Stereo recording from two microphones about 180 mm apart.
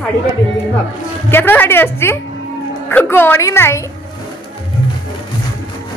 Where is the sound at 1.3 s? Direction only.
10° left (ahead or behind).